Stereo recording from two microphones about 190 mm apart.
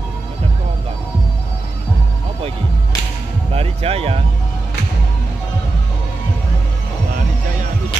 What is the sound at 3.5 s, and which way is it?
Speech, 30° right (ahead or behind).